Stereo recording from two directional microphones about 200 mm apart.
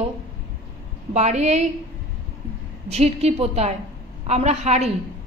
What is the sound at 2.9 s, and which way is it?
A woman's voice, 30° right (ahead or behind).